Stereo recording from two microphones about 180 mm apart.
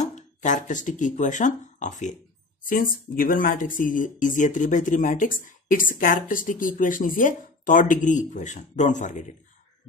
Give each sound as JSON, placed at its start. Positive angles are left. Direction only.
{"t": 0.0, "sound": "speech", "side_deg": 40}